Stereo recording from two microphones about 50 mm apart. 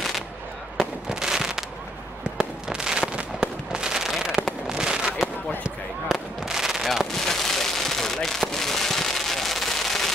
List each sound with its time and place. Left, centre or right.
0.7 s fireworks: centre
7.1 s fireworks: centre